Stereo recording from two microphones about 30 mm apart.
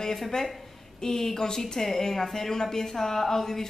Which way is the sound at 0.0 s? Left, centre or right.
Centre.